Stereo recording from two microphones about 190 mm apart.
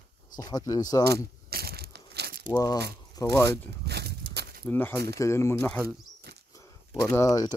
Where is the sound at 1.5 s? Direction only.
55° right (ahead or behind).